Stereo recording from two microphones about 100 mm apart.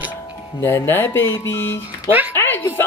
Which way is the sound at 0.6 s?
20° left (ahead or behind).